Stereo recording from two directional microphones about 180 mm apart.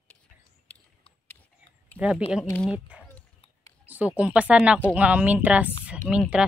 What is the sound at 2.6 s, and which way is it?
Speech, 5° right (ahead or behind).